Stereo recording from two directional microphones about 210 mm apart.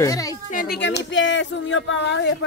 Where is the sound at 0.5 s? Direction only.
50° left (ahead or behind).